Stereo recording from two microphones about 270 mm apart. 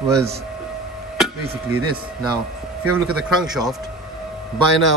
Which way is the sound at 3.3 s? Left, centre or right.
Centre.